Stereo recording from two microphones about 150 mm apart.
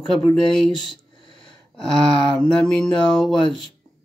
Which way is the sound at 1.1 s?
35° left (ahead or behind).